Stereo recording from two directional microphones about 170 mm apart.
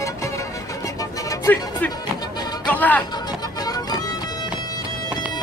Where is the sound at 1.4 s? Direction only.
10° left (ahead or behind).